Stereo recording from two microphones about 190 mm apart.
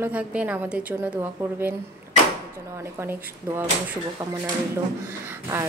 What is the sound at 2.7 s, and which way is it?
A woman's voice, 15° right (ahead or behind).